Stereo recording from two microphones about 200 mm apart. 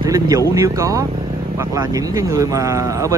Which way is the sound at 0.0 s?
20° right (ahead or behind).